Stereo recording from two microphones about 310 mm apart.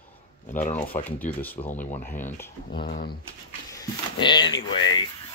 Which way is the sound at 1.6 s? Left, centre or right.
Left.